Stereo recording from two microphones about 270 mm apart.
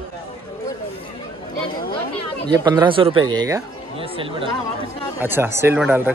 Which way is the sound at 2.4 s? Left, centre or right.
Centre.